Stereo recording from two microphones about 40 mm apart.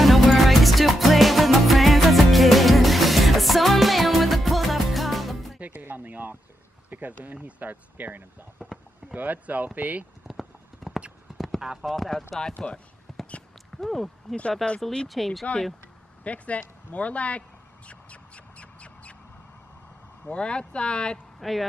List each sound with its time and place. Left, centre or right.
0.0 s music: centre
5.7 s music: right
6.9 s speech: right
7.3 s speech: right
8.6 s a sound: centre
9.1 s speech: right
10.2 s clip-clop: centre
11.8 s speech: centre
12.5 s speech: left
13.7 s speech: centre
16.3 s a sound: left
20.2 s speech: left
21.4 s speech: centre